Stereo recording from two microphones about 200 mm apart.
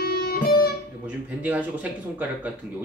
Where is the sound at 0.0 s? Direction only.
50° left (ahead or behind).